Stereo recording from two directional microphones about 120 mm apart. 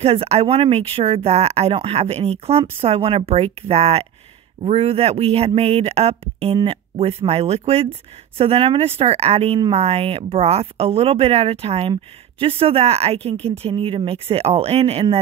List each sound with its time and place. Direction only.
0.0 s speech: 55° right (ahead or behind)